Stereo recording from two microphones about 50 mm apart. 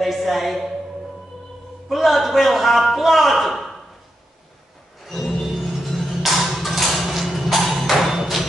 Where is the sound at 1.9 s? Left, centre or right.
Centre.